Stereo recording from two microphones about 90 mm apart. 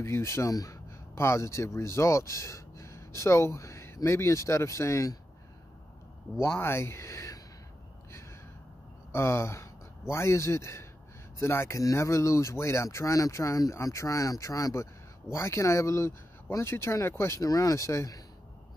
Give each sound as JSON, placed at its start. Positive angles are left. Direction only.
{"t": 0.0, "sound": "speech", "side_deg": 30}
{"t": 6.4, "sound": "speech", "side_deg": 30}
{"t": 9.1, "sound": "a man's voice", "side_deg": 30}